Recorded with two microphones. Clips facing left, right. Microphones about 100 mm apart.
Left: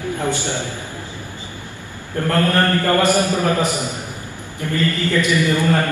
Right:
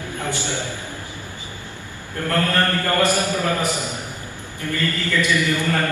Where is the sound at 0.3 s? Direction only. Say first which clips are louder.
Left 4 dB; 20° left (ahead or behind).